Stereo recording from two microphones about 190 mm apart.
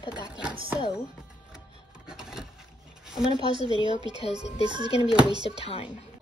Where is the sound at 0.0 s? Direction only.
25° left (ahead or behind).